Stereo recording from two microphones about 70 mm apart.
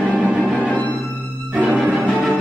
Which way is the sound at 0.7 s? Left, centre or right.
Left.